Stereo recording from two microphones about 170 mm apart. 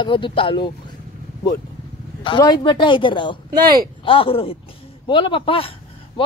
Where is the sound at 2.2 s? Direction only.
25° left (ahead or behind).